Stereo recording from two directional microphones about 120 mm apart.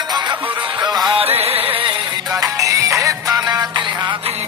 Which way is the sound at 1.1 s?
55° right (ahead or behind).